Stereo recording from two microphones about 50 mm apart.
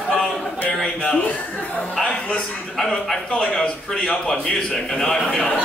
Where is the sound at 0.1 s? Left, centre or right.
Centre.